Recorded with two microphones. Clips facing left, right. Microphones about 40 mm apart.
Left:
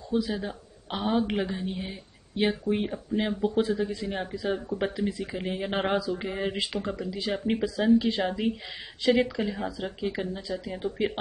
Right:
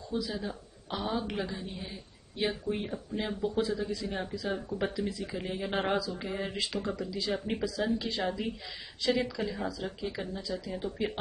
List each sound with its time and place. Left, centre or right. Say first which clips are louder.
0.1 s a woman's voice: left 6 dB; left